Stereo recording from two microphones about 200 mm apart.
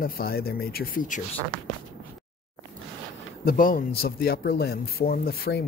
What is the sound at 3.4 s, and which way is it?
Speech, 45° left (ahead or behind).